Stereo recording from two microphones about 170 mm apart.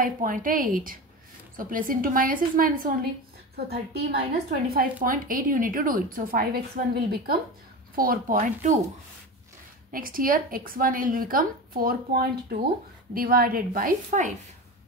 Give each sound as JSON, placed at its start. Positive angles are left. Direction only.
{"t": 0.0, "sound": "a woman's voice", "side_deg": -55}
{"t": 9.8, "sound": "a woman's voice", "side_deg": -55}